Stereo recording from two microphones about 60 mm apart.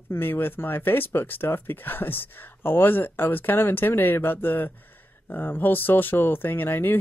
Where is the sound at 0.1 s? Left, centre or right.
Left.